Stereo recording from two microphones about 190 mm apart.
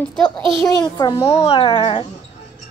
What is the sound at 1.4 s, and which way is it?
Speech, 30° left (ahead or behind).